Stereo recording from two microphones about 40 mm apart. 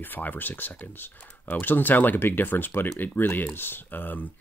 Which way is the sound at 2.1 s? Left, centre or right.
Left.